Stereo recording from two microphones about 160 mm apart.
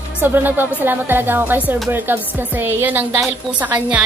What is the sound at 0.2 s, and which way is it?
Speech, 10° right (ahead or behind).